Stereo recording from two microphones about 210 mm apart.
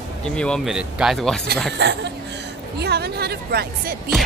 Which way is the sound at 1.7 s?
55° right (ahead or behind).